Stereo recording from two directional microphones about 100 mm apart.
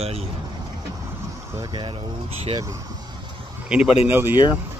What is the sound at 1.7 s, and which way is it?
Speech, 55° right (ahead or behind).